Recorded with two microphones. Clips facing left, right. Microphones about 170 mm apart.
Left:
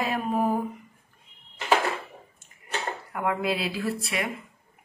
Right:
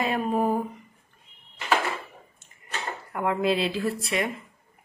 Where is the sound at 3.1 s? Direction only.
5° left (ahead or behind).